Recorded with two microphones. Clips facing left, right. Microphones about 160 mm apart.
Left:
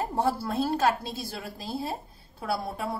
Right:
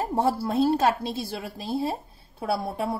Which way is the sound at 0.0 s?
25° right (ahead or behind).